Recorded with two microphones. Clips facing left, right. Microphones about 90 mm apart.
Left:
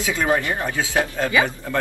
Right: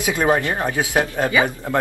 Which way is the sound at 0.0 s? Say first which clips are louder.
Right 3 dB; 20° right (ahead or behind).